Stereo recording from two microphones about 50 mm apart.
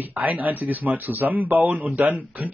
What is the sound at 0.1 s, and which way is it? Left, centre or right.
A man's voice, right.